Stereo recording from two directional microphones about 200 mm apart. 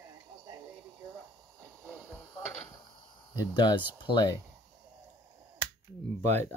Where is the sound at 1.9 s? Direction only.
15° left (ahead or behind).